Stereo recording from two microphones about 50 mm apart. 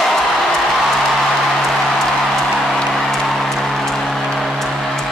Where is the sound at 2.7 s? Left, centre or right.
Centre.